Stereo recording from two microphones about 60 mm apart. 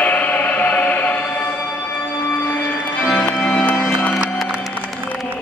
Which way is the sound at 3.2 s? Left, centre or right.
Left.